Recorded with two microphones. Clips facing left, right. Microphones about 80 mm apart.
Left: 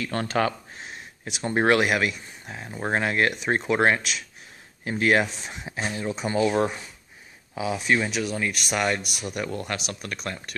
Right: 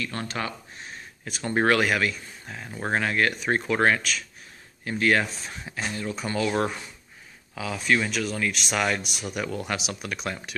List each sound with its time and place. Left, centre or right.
0.0 s speech: left
1.2 s speech: centre
7.5 s speech: centre